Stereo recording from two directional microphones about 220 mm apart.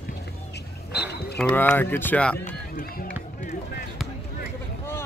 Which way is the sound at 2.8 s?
40° left (ahead or behind).